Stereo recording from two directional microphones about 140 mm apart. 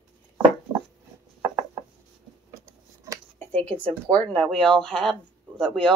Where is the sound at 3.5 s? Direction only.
10° left (ahead or behind).